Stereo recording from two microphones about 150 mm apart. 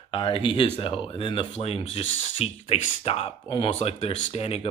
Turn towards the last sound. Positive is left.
turn(degrees=40)  # may be behind; listen again after turning